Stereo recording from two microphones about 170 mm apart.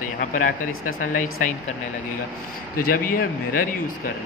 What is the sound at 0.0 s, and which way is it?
Speech, 50° left (ahead or behind).